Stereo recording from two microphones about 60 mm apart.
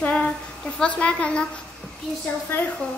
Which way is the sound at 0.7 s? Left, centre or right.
Left.